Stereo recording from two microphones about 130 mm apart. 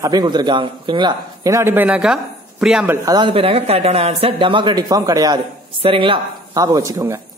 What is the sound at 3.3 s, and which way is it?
Speech, 45° right (ahead or behind).